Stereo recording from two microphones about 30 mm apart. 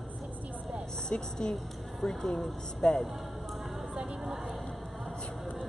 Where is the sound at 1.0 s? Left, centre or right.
Left.